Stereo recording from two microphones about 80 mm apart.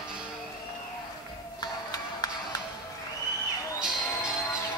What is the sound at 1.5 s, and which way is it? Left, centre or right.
Music, left.